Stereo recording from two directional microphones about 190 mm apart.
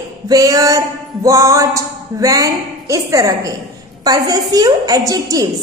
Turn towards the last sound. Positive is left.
turn(degrees=-20)  # may be behind; listen again after turning